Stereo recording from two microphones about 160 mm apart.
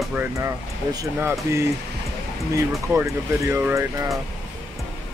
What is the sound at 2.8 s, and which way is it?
Speech, 20° right (ahead or behind).